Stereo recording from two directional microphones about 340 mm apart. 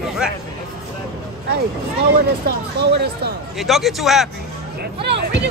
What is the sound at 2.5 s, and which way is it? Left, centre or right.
Speech, right.